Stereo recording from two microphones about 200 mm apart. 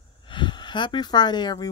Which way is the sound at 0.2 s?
25° left (ahead or behind).